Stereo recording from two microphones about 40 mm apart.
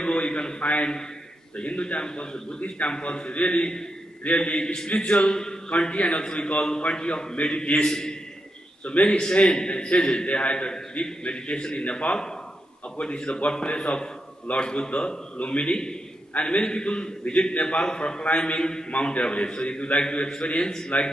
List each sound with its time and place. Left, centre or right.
0.0 s a sound: left
1.6 s a man's voice: left
7.3 s a man's voice: left
7.9 s a man's voice: centre
8.8 s a man's voice: left
10.7 s a man's voice: centre
18.9 s a man's voice: left
20.9 s a man's voice: left